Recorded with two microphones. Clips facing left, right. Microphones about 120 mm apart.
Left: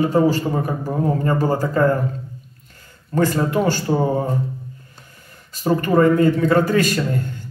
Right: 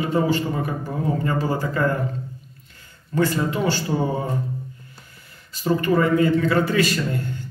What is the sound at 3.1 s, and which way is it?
A man's voice, 45° left (ahead or behind).